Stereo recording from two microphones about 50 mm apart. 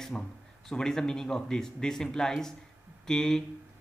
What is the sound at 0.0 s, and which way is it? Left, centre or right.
Speech, centre.